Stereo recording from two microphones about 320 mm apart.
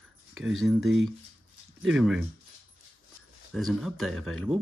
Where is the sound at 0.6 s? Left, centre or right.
Centre.